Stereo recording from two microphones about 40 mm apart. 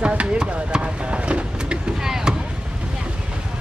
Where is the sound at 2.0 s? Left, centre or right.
Centre.